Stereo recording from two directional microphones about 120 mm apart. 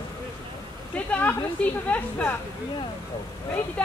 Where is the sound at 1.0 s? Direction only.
10° left (ahead or behind).